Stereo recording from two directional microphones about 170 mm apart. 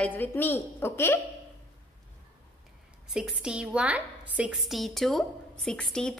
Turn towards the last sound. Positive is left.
turn(degrees=5)  # may be behind; listen again after turning